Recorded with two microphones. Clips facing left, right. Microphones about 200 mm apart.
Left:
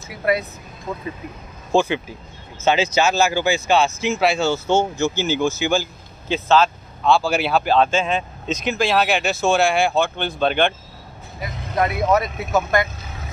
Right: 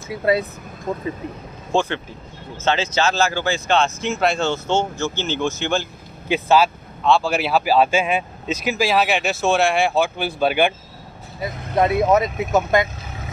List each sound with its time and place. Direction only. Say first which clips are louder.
0.1 s speech: right 2 dB; 25° right (ahead or behind)
1.7 s speech: left 3 dB; 5° left (ahead or behind)
6.2 s speech: right 1 dB; 10° right (ahead or behind)
7.1 s speech: even; centre (ahead or behind)
11.7 s speech: right 2 dB; 25° right (ahead or behind)